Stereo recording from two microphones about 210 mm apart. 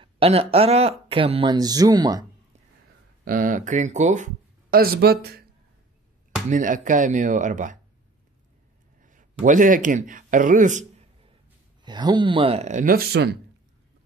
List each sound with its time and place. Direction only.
0.0 s speech: 30° right (ahead or behind)
3.3 s speech: 40° right (ahead or behind)
6.5 s speech: 40° right (ahead or behind)
9.0 s speech: 40° right (ahead or behind)
11.8 s speech: 20° right (ahead or behind); by 13.4 s 50° right (ahead or behind)